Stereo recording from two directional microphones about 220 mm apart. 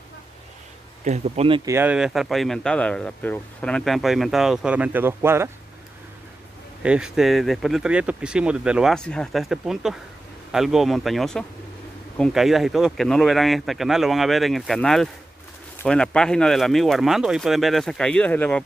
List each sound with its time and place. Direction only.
1.0 s speech: 30° right (ahead or behind)
1.7 s speech: 10° right (ahead or behind)
6.8 s speech: 5° right (ahead or behind)